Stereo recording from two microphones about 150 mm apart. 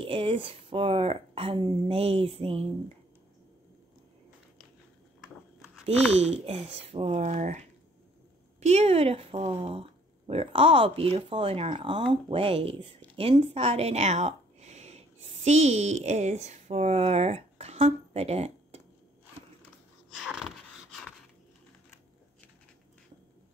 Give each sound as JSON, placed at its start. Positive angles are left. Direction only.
{"t": 0.0, "sound": "speech", "side_deg": -35}
{"t": 6.3, "sound": "speech", "side_deg": -40}
{"t": 20.2, "sound": "a sound", "side_deg": 0}